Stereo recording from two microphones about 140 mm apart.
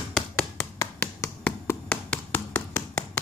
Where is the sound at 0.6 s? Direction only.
20° left (ahead or behind).